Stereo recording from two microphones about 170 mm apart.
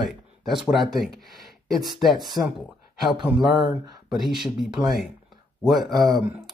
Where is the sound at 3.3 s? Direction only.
10° right (ahead or behind).